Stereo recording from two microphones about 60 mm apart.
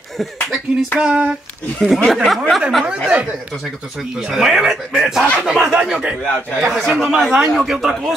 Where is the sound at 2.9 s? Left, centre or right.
Right.